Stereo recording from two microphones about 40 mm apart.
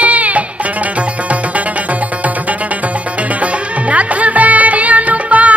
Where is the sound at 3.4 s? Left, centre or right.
Right.